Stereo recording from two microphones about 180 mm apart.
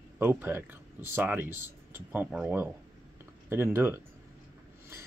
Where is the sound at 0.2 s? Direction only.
10° right (ahead or behind).